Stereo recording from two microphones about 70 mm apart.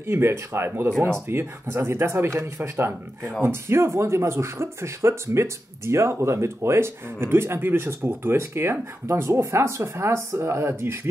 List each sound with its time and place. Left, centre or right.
0.0 s speech: right